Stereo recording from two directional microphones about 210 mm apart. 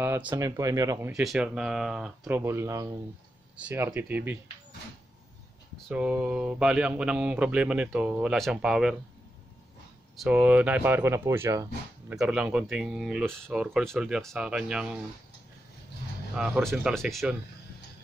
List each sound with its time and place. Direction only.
0.0 s speech: 10° right (ahead or behind)
1.1 s speech: centre (ahead or behind)
5.9 s speech: 5° right (ahead or behind)
10.1 s speech: centre (ahead or behind)
16.3 s speech: 5° right (ahead or behind)